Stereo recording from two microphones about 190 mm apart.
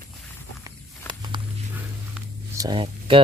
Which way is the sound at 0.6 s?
25° right (ahead or behind).